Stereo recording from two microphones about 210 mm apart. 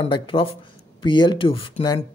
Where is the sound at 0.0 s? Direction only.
25° left (ahead or behind).